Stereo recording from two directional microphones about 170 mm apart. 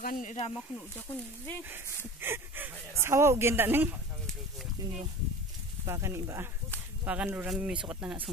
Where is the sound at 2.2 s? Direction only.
15° right (ahead or behind).